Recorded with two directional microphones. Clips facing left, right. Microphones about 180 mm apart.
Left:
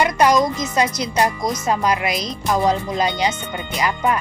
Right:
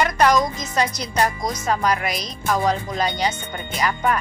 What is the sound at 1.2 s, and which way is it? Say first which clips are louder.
A woman's voice: left 2 dB; 20° left (ahead or behind).